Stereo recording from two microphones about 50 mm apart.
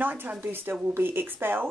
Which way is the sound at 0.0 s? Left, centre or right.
Right.